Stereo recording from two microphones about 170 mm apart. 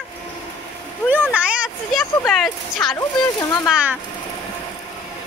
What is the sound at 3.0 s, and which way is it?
Speech, 20° left (ahead or behind).